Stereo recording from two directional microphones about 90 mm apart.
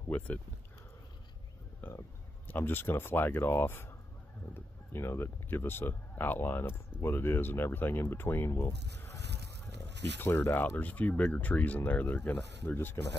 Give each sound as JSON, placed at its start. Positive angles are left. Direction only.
{"t": 2.4, "sound": "speech", "side_deg": 25}